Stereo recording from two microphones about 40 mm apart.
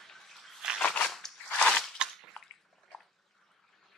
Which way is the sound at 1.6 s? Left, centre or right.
Centre.